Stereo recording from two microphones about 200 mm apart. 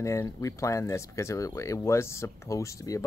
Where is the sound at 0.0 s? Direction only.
15° left (ahead or behind).